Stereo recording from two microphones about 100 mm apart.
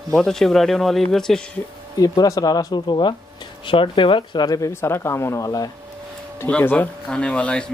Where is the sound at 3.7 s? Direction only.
60° left (ahead or behind); by 5.7 s 35° left (ahead or behind).